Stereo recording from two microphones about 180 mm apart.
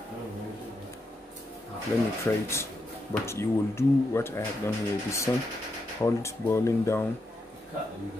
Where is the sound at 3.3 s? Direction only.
15° left (ahead or behind).